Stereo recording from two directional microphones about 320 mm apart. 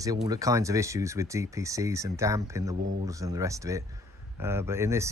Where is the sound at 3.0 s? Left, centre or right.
Centre.